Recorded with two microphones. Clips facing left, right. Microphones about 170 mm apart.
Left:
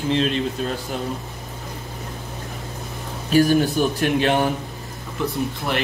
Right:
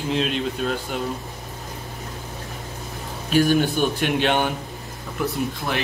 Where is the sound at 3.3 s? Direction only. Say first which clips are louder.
Left 2 dB; 40° left (ahead or behind).